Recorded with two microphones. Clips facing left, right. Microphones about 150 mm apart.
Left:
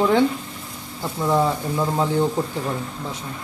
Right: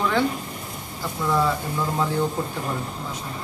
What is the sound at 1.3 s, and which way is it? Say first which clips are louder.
Speech: left 3 dB; 25° left (ahead or behind).